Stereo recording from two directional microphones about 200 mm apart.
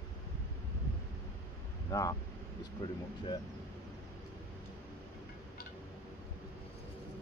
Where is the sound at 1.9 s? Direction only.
15° left (ahead or behind).